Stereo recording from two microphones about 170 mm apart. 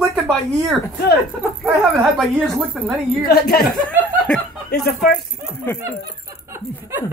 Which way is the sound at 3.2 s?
65° left (ahead or behind).